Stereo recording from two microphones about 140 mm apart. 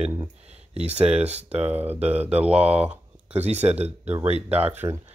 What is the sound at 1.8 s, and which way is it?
Speech, 50° right (ahead or behind).